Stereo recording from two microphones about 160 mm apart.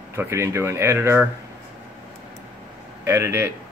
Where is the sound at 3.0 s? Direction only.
15° right (ahead or behind).